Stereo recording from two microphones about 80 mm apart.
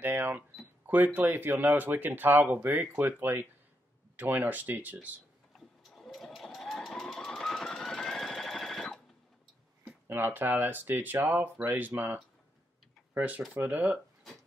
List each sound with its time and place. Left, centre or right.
0.0 s speech: right
5.9 s sewing machine: centre
10.0 s speech: right